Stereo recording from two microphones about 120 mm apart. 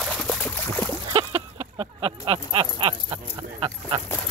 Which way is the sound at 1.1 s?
55° right (ahead or behind).